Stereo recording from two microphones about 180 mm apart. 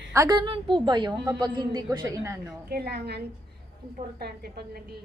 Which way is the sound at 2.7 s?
65° right (ahead or behind).